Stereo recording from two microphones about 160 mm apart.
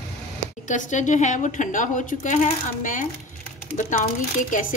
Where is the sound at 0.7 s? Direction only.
50° left (ahead or behind).